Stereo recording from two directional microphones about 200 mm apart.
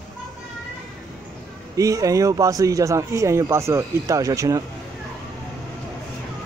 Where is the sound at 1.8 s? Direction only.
15° right (ahead or behind).